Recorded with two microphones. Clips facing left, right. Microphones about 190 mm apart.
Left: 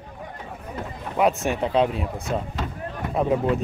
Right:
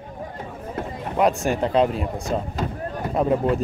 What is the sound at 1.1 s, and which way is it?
Speech, centre (ahead or behind).